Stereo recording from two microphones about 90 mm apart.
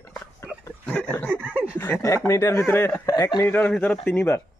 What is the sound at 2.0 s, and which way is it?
Speech, 35° left (ahead or behind).